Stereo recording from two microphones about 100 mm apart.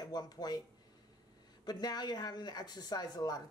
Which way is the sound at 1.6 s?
45° left (ahead or behind).